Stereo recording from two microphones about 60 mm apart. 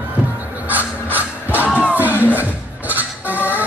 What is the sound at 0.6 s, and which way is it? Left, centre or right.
Music, right.